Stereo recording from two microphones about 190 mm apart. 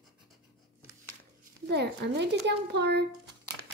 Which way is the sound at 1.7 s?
60° right (ahead or behind).